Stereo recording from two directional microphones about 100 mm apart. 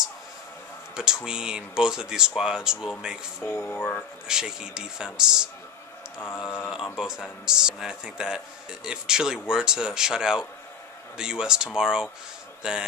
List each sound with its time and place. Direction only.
0.9 s speech: 5° right (ahead or behind)
3.3 s speech: 25° left (ahead or behind)
4.3 s speech: 5° right (ahead or behind)
6.7 s speech: 5° right (ahead or behind)